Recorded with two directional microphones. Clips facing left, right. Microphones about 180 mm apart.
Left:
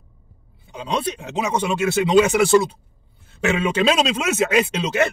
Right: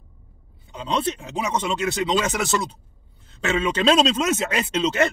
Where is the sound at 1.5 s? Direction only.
10° left (ahead or behind).